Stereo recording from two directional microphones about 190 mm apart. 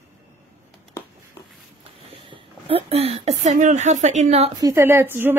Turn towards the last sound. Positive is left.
turn(degrees=-10)  # may be behind; listen again after turning